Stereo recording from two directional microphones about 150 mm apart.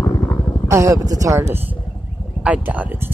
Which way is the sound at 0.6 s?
20° right (ahead or behind).